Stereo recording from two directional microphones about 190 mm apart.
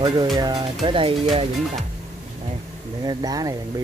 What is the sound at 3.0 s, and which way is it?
Speech, 20° right (ahead or behind).